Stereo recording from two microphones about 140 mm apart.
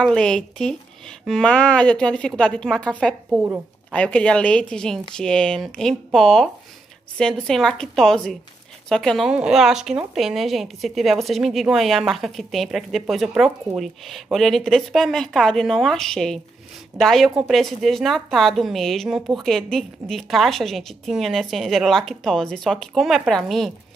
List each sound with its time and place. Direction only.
0.0 s a woman's voice: 5° left (ahead or behind)